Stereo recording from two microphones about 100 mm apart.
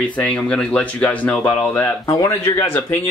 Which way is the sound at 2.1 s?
25° left (ahead or behind).